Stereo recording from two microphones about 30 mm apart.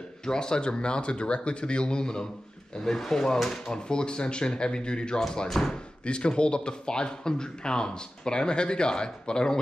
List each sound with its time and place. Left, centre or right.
0.2 s speech: left
5.5 s speech: centre
6.0 s speech: left